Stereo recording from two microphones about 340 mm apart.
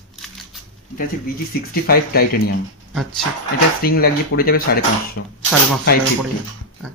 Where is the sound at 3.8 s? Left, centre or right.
Left.